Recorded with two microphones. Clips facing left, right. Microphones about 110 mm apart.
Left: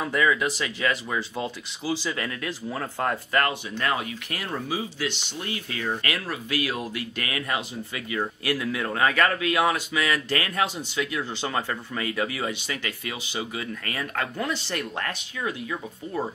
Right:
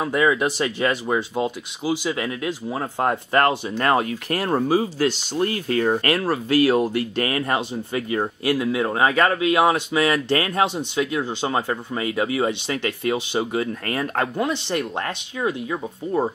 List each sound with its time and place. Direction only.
0.0 s speech: 20° right (ahead or behind)
1.3 s speech: 15° right (ahead or behind); by 14.4 s 35° right (ahead or behind)
14.4 s speech: 25° right (ahead or behind)